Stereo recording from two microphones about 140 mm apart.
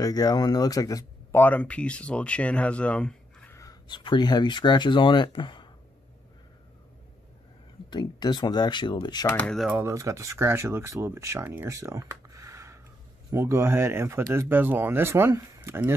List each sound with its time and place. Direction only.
0.0 s speech: 25° left (ahead or behind)
1.4 s speech: 10° left (ahead or behind)
3.8 s speech: 35° left (ahead or behind)
7.9 s speech: 30° left (ahead or behind)
9.3 s speech: 10° left (ahead or behind)
9.8 s speech: 20° right (ahead or behind)